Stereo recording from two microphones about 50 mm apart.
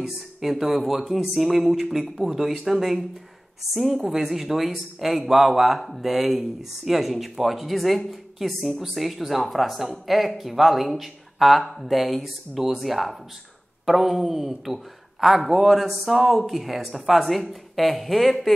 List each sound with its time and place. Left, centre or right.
0.0 s a woman's voice: centre